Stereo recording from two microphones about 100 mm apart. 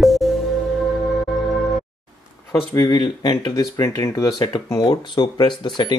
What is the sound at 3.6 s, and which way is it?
Speech, 35° left (ahead or behind).